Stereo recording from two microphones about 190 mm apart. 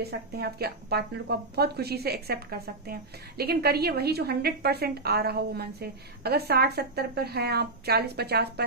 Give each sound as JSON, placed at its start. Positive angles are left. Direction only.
{"t": 0.0, "sound": "a woman's voice", "side_deg": -55}